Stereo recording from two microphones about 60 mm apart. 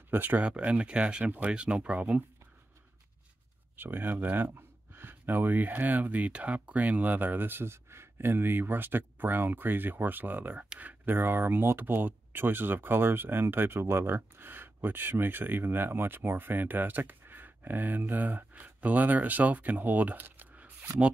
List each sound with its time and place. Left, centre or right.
0.1 s speech: right
0.7 s speech: centre
1.2 s speech: right
1.5 s speech: centre
3.7 s speech: right